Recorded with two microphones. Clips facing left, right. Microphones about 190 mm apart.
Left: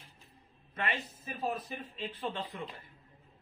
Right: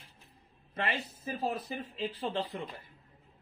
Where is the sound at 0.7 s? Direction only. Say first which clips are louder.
Right 2 dB; 30° right (ahead or behind).